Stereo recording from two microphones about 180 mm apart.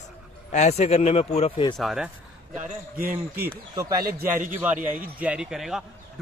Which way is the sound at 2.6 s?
50° right (ahead or behind).